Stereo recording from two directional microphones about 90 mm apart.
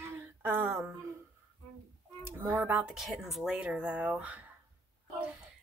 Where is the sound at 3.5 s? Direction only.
15° right (ahead or behind).